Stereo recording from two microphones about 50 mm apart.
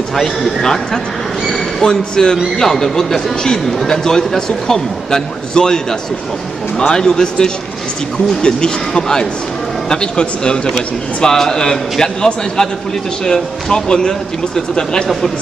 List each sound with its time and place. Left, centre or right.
0.1 s speech: centre